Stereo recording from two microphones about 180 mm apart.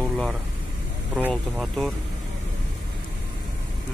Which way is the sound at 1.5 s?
Centre (ahead or behind).